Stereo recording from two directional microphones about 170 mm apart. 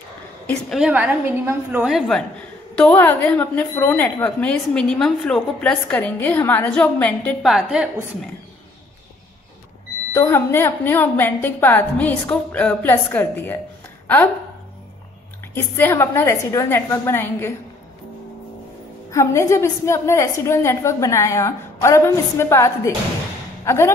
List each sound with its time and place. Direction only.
0.5 s a woman's voice: centre (ahead or behind)
7.4 s a woman's voice: 5° right (ahead or behind)
10.1 s a woman's voice: 15° left (ahead or behind)
15.5 s a woman's voice: 15° left (ahead or behind)
19.0 s a woman's voice: 15° left (ahead or behind)